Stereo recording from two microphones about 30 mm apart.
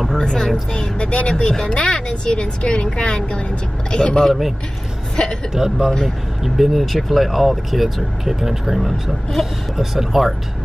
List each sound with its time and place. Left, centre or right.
0.2 s a woman's voice: left
5.5 s a man's voice: centre
6.4 s speech: centre